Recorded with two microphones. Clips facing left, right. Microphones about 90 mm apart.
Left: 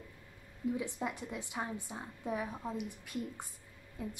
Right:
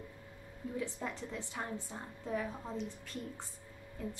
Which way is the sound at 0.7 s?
15° left (ahead or behind).